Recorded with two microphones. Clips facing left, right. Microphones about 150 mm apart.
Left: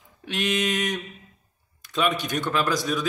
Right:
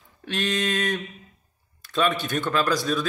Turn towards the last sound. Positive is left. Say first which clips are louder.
# right 1 dB
turn(degrees=15)  # may be behind; listen again after turning